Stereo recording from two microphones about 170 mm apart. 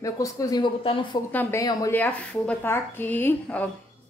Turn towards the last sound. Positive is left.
turn(degrees=10)  # may be behind; listen again after turning